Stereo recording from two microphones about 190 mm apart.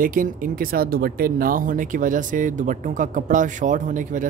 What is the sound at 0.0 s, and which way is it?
Speech, 45° right (ahead or behind).